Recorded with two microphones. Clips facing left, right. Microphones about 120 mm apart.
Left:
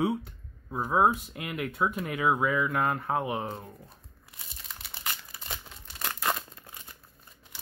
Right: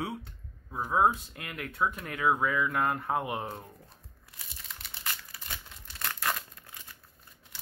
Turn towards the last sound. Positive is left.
turn(degrees=20)  # may be behind; listen again after turning